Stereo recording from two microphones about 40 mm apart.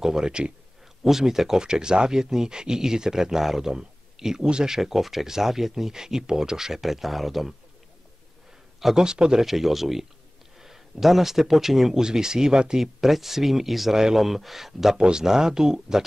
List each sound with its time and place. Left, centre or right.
0.0 s speech: centre
1.0 s speech: centre
4.7 s speech: centre
8.7 s a sound: centre
9.0 s speech: centre
9.4 s a man's voice: centre
12.8 s speech: centre
15.0 s speech: centre